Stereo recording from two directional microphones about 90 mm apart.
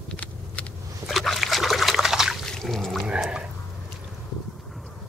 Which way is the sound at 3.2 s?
10° right (ahead or behind).